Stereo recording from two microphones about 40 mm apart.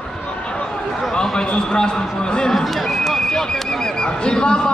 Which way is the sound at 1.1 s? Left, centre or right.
Left.